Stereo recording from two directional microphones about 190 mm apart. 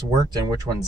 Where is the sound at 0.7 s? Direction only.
15° right (ahead or behind).